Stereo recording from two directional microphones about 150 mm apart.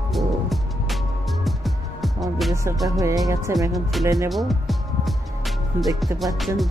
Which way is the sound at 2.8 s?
20° right (ahead or behind).